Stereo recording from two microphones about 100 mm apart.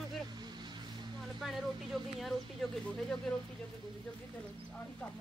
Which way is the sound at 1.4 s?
Centre (ahead or behind).